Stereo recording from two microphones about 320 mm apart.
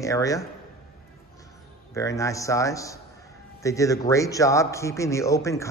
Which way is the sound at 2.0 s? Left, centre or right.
Centre.